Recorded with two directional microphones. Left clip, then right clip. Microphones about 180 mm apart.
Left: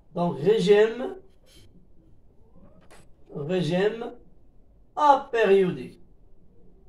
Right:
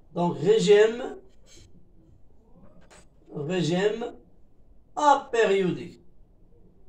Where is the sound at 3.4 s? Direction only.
10° right (ahead or behind).